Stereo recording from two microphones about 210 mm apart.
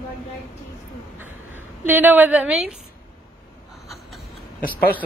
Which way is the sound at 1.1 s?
10° right (ahead or behind).